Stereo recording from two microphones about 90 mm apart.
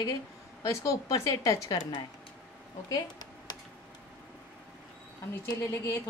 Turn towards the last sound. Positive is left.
turn(degrees=30)  # may be behind; listen again after turning